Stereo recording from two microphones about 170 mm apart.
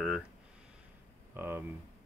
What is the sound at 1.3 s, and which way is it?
Speech, 10° right (ahead or behind).